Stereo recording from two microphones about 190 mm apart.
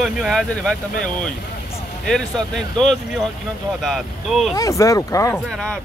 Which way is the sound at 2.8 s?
Centre (ahead or behind).